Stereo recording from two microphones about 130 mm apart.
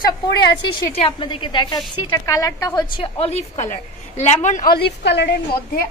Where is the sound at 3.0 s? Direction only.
50° left (ahead or behind); by 4.6 s 70° left (ahead or behind).